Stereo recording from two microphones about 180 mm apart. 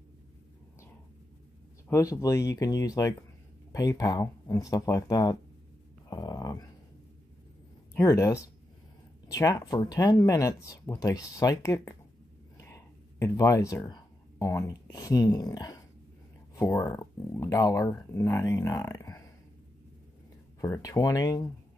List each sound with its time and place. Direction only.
1.9 s speech: 15° left (ahead or behind)
6.0 s a sound: 20° left (ahead or behind)
7.9 s speech: 15° left (ahead or behind)
20.6 s speech: 15° left (ahead or behind)